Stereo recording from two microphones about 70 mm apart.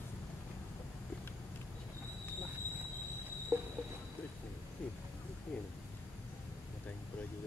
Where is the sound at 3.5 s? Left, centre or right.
Right.